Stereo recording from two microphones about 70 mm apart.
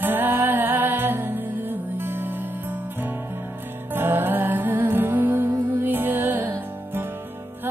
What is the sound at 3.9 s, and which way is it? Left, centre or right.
Music, right.